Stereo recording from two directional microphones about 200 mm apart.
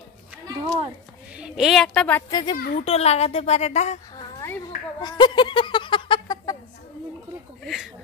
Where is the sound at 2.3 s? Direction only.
20° left (ahead or behind).